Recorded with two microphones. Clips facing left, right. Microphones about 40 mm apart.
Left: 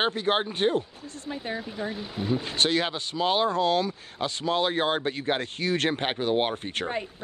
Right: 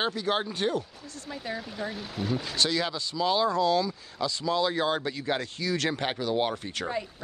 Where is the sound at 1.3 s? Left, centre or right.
Left.